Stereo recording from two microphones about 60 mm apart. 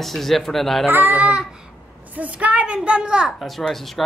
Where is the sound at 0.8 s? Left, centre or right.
Right; by 3.3 s centre.